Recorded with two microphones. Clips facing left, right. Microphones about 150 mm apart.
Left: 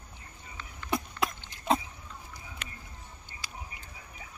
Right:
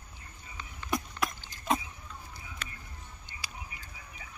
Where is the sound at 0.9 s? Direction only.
25° left (ahead or behind).